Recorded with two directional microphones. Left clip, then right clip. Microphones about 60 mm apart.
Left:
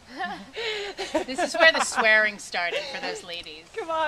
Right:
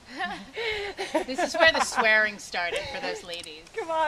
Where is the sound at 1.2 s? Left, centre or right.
Left.